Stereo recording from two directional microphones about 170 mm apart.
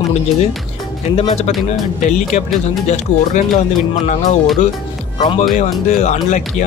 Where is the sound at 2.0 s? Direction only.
45° left (ahead or behind).